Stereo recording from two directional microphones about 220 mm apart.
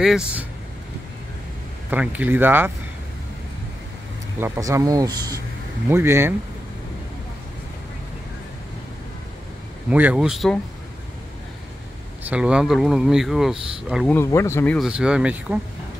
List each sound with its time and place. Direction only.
0.0 s speech: 5° right (ahead or behind)
1.9 s speech: 5° right (ahead or behind)
4.4 s speech: 15° right (ahead or behind)
9.8 s speech: 5° right (ahead or behind)
12.2 s speech: 5° right (ahead or behind)
14.1 s speech: 10° left (ahead or behind)
14.9 s speech: 5° right (ahead or behind)